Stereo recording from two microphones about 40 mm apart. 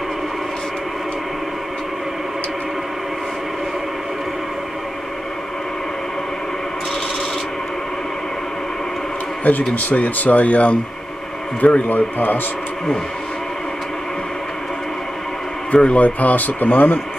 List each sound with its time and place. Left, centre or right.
9.4 s speech: left
15.7 s speech: left